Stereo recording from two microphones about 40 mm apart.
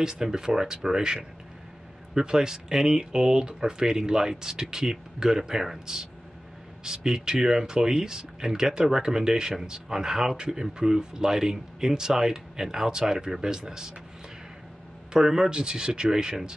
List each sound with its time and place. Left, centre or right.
0.0 s speech: centre
15.1 s speech: centre